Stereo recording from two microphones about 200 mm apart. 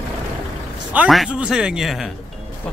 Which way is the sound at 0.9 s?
5° right (ahead or behind).